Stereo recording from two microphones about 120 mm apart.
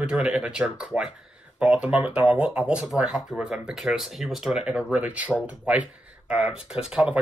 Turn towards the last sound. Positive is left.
turn(degrees=-10)  # may be behind; listen again after turning